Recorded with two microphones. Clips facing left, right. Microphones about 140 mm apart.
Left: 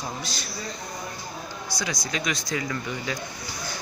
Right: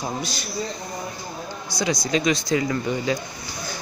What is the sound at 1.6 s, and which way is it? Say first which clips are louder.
Speech: right 8 dB; 25° right (ahead or behind).